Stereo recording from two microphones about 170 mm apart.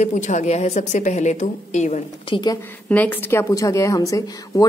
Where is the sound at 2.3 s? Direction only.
25° left (ahead or behind).